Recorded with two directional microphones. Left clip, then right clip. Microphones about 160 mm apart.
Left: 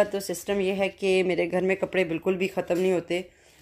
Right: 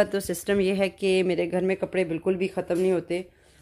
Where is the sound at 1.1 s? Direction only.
5° right (ahead or behind).